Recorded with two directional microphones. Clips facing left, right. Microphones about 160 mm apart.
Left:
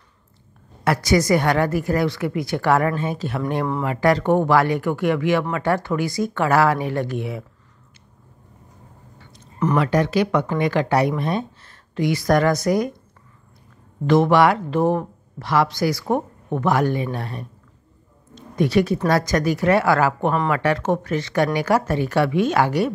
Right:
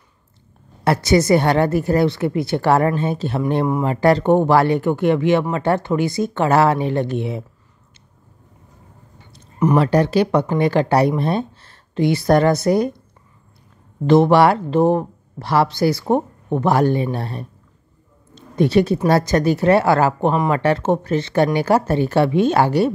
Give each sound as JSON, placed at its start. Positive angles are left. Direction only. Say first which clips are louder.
{"t": 0.8, "sound": "speech", "louder": "right 3 dB", "side_deg": -25}
{"t": 9.8, "sound": "speech", "louder": "right 3 dB", "side_deg": -30}
{"t": 14.0, "sound": "speech", "louder": "right 3 dB", "side_deg": -25}
{"t": 18.3, "sound": "a sound", "louder": "right 3 dB", "side_deg": -30}
{"t": 19.0, "sound": "speech", "louder": "right 3 dB", "side_deg": -30}